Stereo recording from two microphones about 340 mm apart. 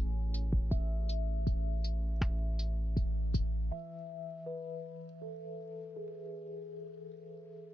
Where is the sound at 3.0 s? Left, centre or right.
Left.